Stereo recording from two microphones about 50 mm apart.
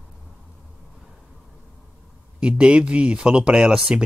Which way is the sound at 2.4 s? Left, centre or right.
Right.